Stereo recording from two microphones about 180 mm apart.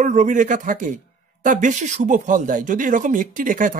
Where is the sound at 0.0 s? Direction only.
45° right (ahead or behind).